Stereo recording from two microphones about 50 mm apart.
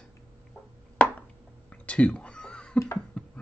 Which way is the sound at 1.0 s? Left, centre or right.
Left.